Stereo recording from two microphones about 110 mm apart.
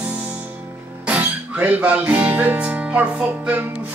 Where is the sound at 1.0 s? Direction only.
15° right (ahead or behind).